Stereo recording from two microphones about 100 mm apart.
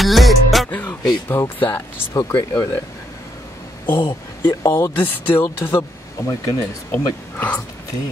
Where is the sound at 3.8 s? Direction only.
50° left (ahead or behind).